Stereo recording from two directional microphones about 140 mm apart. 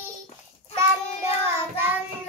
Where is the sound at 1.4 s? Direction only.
15° right (ahead or behind).